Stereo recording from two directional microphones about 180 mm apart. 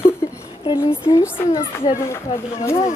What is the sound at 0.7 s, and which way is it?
Speech, 25° left (ahead or behind).